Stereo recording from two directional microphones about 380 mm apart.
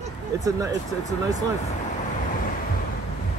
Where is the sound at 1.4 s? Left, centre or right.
Centre.